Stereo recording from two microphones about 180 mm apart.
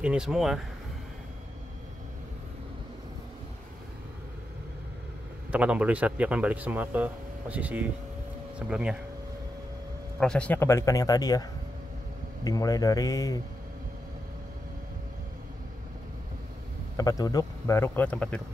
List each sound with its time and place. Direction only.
0.0 s speech: 5° right (ahead or behind)
5.5 s speech: 5° right (ahead or behind)
10.2 s speech: 5° left (ahead or behind)
12.4 s speech: 20° left (ahead or behind)
16.9 s speech: 20° left (ahead or behind)